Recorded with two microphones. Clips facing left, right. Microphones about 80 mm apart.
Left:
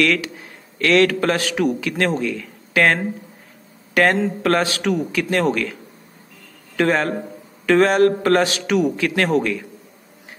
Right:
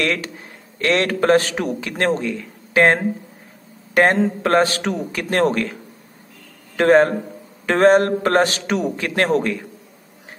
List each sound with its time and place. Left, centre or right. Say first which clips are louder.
0.0 s a man's voice: left 3 dB; right
6.8 s a man's voice: right 5 dB; right